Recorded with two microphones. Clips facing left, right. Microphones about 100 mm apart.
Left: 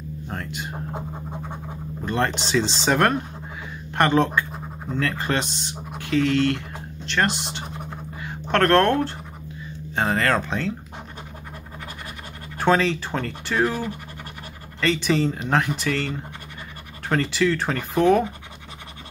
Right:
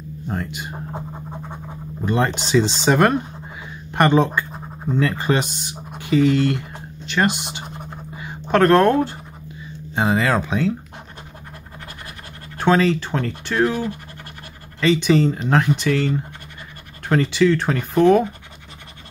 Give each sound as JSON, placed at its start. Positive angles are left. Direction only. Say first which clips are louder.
{"t": 0.3, "sound": "speech", "louder": "right 5 dB", "side_deg": -5}
{"t": 2.0, "sound": "speech", "louder": "right 3 dB", "side_deg": -5}
{"t": 12.5, "sound": "speech", "louder": "right 3 dB", "side_deg": 0}